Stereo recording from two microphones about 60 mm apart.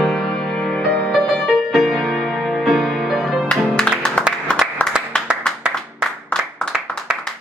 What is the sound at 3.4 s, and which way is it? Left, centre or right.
Music, centre.